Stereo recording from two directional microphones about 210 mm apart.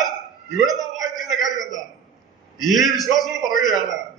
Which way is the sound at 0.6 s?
Centre (ahead or behind).